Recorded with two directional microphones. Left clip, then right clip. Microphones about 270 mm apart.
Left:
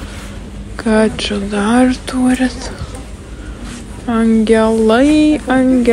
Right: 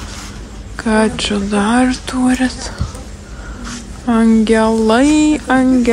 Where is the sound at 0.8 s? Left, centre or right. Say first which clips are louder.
Left 1 dB; centre.